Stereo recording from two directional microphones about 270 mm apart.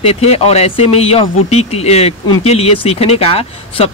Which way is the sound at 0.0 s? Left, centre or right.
Left.